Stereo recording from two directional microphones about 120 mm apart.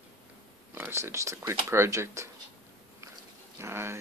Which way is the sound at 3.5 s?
20° right (ahead or behind).